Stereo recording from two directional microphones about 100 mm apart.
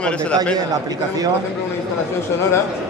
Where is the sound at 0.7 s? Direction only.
40° right (ahead or behind).